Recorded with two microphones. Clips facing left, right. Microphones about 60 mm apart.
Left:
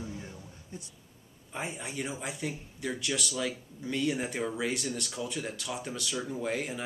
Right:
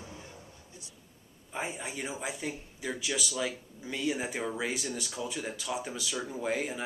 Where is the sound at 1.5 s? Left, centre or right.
Centre.